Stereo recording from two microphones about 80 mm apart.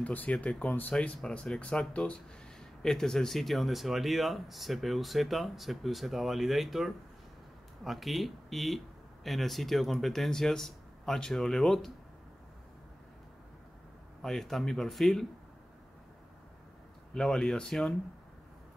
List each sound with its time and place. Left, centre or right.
0.0 s speech: left
14.2 s speech: centre
17.1 s speech: centre